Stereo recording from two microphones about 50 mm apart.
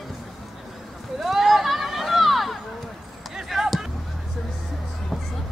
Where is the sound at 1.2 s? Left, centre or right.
Centre.